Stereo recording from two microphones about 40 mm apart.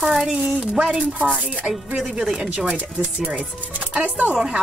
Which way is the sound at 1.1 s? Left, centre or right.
Right.